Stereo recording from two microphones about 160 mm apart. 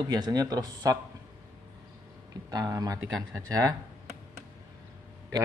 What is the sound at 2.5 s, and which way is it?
Speech, 25° right (ahead or behind).